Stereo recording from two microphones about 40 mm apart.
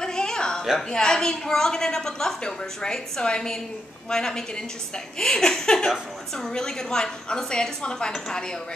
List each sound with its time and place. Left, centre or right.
0.0 s a sound: centre
0.8 s a woman's voice: centre
5.3 s laughter: centre
6.3 s a woman's voice: centre